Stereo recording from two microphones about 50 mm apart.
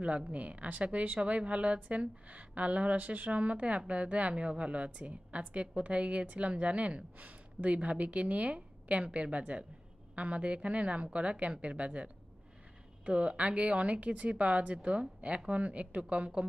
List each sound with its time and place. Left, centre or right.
0.3 s a woman's voice: right